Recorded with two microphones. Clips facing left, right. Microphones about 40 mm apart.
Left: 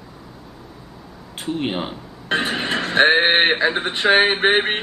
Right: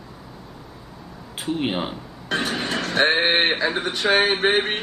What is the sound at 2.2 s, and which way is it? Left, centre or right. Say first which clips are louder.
Speech: left 3 dB; left.